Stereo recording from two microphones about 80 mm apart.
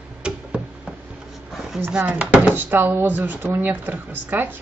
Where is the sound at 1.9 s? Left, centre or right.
Centre.